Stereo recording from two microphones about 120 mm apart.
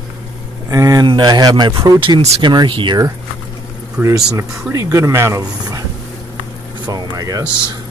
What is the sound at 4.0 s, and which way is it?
Speech, 25° right (ahead or behind).